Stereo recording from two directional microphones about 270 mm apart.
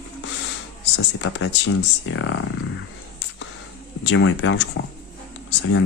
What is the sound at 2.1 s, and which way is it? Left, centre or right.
Speech, left.